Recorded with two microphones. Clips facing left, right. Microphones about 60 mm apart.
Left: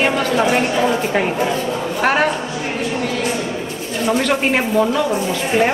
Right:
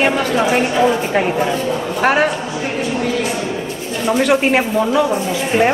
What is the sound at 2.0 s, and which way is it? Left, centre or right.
Speech, centre.